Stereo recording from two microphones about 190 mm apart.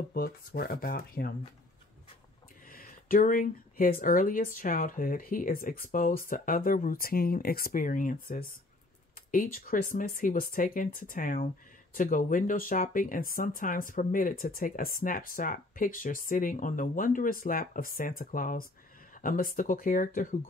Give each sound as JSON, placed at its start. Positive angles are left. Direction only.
{"t": 0.1, "sound": "speech", "side_deg": 55}
{"t": 2.7, "sound": "speech", "side_deg": 50}